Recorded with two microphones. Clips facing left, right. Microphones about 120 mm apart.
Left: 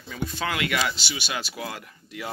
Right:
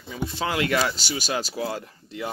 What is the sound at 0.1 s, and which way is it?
Speech, 25° right (ahead or behind).